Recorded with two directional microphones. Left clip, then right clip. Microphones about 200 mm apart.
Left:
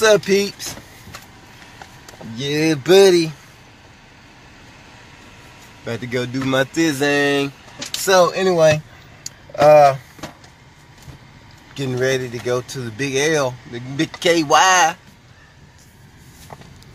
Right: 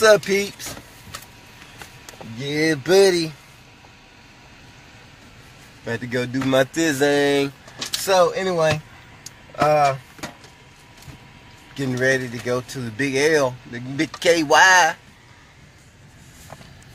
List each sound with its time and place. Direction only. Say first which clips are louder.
0.0 s speech: left 1 dB; centre (ahead or behind)
2.3 s speech: left 2 dB; 10° left (ahead or behind)
5.9 s speech: left 1 dB; 5° left (ahead or behind)
6.6 s speech: left 3 dB; 10° right (ahead or behind)
8.0 s speech: left 3 dB; 10° left (ahead or behind)
9.6 s speech: left 7 dB; 15° left (ahead or behind)
11.7 s speech: even; 5° left (ahead or behind)